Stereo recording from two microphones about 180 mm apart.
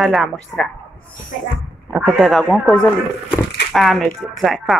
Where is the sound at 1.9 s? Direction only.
5° right (ahead or behind).